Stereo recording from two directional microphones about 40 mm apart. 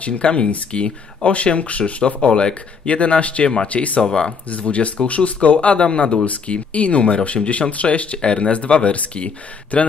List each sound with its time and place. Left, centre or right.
0.0 s speech: left
4.0 s speech: centre
4.5 s speech: left
7.4 s speech: centre
7.7 s speech: left